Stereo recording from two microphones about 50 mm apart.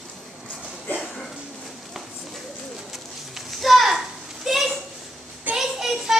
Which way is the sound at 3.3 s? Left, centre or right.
Centre.